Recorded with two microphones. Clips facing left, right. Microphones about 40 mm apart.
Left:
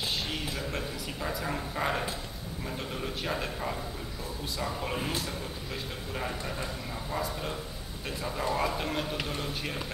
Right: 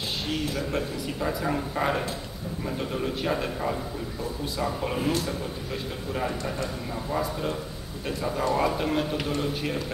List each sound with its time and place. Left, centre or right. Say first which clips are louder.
0.3 s speech: right 6 dB; centre